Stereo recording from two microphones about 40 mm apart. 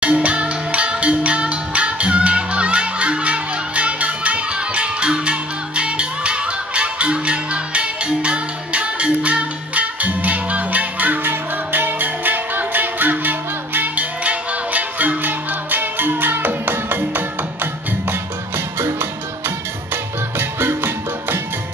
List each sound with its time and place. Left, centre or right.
0.0 s music: right
11.2 s music: right
14.2 s music: right
18.8 s music: right
20.3 s music: right